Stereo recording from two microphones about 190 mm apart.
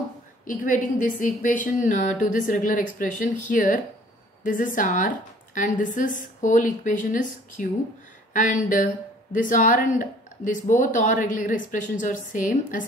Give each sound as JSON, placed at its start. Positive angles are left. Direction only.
{"t": 0.5, "sound": "speech", "side_deg": 45}